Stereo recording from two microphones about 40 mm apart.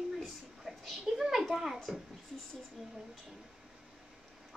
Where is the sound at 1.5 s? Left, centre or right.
Centre.